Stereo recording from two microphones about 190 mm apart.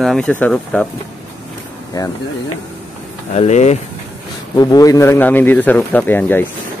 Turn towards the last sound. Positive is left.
turn(degrees=10)  # may be behind; listen again after turning